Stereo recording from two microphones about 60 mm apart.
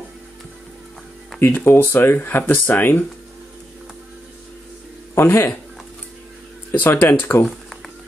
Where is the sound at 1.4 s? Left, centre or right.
Left.